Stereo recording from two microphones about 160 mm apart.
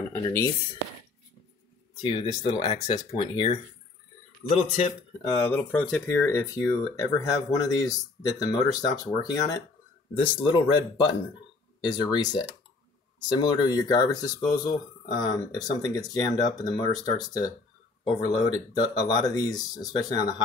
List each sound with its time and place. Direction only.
0.1 s speech: 15° left (ahead or behind)
2.0 s speech: 30° left (ahead or behind)
4.4 s a man's voice: 10° left (ahead or behind)
6.0 s speech: 20° left (ahead or behind)
10.1 s speech: 35° left (ahead or behind)